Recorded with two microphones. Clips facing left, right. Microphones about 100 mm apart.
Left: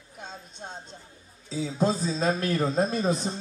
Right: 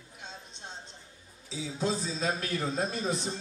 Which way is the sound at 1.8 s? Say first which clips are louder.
Left 6 dB; 45° left (ahead or behind).